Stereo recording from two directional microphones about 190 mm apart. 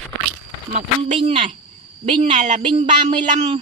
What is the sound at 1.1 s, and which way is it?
Speech, 30° right (ahead or behind).